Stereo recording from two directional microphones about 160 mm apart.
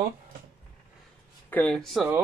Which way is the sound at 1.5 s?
10° left (ahead or behind).